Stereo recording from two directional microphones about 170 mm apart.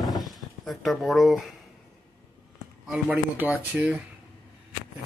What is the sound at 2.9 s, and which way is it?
Speech, 5° right (ahead or behind).